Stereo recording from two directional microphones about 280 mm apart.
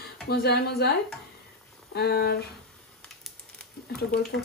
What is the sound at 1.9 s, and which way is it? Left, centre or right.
Speech, left.